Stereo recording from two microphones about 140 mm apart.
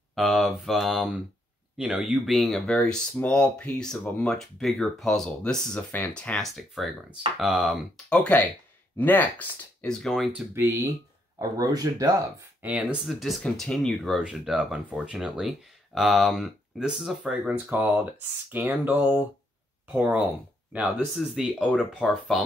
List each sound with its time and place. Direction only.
0.1 s speech: centre (ahead or behind)
8.1 s speech: 10° left (ahead or behind)
10.5 s speech: 25° right (ahead or behind)
12.6 s speech: 10° right (ahead or behind)